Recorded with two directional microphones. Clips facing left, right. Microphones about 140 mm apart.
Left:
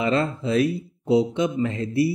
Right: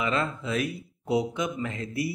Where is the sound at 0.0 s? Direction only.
35° left (ahead or behind).